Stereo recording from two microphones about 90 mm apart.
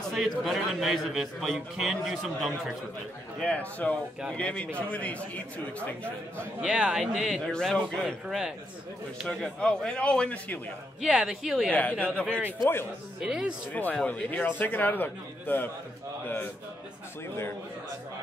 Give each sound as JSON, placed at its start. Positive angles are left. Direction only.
{"t": 0.0, "sound": "a man's voice", "side_deg": 0}
{"t": 3.3, "sound": "a man's voice", "side_deg": 15}
{"t": 6.6, "sound": "speech", "side_deg": -10}
{"t": 7.4, "sound": "a man's voice", "side_deg": 10}
{"t": 11.0, "sound": "speech", "side_deg": -10}
{"t": 11.7, "sound": "a man's voice", "side_deg": 15}
{"t": 12.3, "sound": "a man's voice", "side_deg": -20}
{"t": 13.2, "sound": "speech", "side_deg": -10}
{"t": 14.0, "sound": "a man's voice", "side_deg": 15}